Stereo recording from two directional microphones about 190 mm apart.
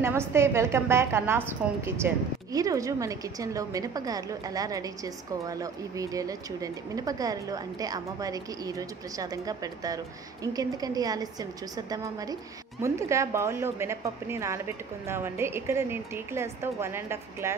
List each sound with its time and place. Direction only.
0.0 s a woman's voice: 15° right (ahead or behind)